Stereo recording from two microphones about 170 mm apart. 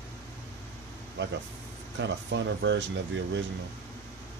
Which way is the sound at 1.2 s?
90° right.